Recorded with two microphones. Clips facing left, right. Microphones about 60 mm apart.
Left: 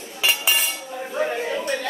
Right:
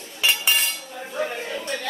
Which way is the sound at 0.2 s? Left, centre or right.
Centre.